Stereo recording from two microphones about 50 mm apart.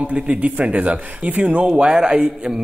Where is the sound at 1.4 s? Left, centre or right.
Centre.